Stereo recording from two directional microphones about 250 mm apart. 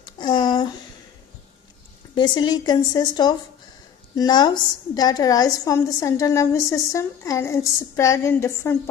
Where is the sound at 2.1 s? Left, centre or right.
Centre.